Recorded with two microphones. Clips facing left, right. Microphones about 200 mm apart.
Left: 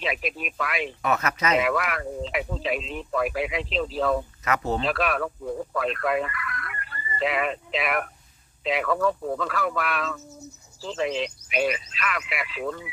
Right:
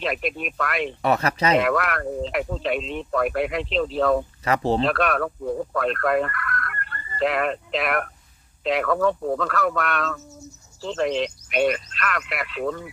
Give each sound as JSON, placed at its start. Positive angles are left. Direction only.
{"t": 0.0, "sound": "speech", "side_deg": 0}
{"t": 1.0, "sound": "speech", "side_deg": -30}
{"t": 1.6, "sound": "speech", "side_deg": 0}
{"t": 4.5, "sound": "speech", "side_deg": -30}
{"t": 4.8, "sound": "speech", "side_deg": 0}